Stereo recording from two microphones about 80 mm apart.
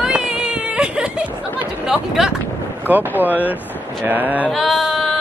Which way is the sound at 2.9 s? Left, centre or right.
Right.